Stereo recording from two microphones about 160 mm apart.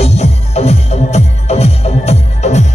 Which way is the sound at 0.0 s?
45° left (ahead or behind).